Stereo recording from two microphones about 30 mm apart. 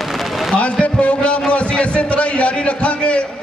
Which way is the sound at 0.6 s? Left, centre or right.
Left.